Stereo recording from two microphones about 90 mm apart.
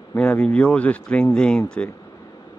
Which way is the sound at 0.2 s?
10° left (ahead or behind).